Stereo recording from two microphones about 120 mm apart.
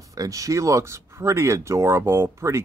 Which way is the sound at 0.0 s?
30° right (ahead or behind).